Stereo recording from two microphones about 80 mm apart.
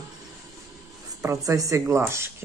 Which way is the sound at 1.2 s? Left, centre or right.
Right.